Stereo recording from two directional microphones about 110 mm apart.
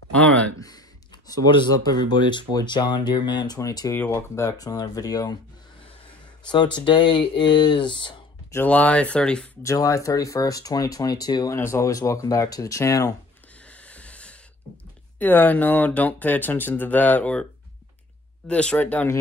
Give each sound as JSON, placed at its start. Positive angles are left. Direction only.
{"t": 0.1, "sound": "a sound", "side_deg": 10}
{"t": 0.6, "sound": "speech", "side_deg": 35}
{"t": 3.9, "sound": "speech", "side_deg": 20}
{"t": 6.4, "sound": "speech", "side_deg": 45}
{"t": 8.6, "sound": "speech", "side_deg": 10}
{"t": 9.6, "sound": "speech", "side_deg": 30}
{"t": 11.5, "sound": "speech", "side_deg": 25}
{"t": 13.7, "sound": "a sound", "side_deg": 10}
{"t": 15.1, "sound": "speech", "side_deg": 15}
{"t": 18.5, "sound": "speech", "side_deg": 10}